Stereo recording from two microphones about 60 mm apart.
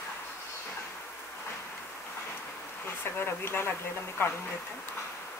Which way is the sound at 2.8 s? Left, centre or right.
Left.